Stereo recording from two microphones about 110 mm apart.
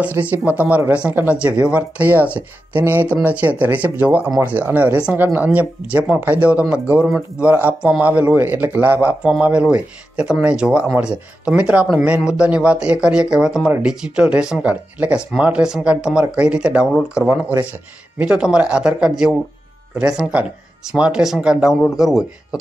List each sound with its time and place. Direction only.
0.0 s a man's voice: 15° right (ahead or behind)